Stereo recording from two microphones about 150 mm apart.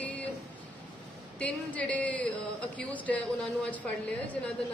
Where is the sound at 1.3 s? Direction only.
10° left (ahead or behind).